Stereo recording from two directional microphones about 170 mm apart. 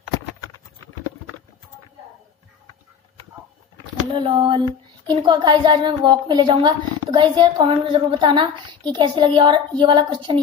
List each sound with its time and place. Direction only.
4.1 s child singing: 30° right (ahead or behind)